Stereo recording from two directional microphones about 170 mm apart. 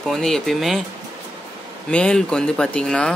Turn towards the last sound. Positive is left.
turn(degrees=5)  # may be behind; listen again after turning